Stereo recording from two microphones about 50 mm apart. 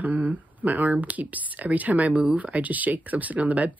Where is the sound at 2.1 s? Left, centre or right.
Centre.